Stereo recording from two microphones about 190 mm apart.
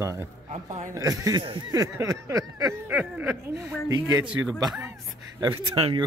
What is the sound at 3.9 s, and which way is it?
Speech, 20° right (ahead or behind).